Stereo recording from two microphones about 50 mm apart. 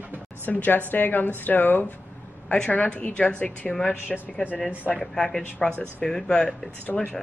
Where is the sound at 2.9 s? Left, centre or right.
Left; by 5.4 s centre.